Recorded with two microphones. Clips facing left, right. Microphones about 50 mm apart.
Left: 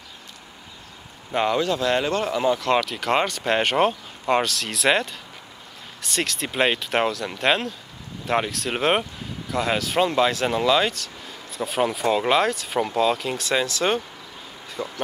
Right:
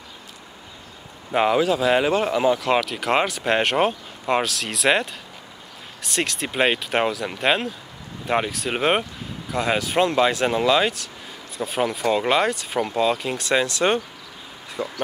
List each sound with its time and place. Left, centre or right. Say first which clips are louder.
1.3 s speech: right 3 dB; centre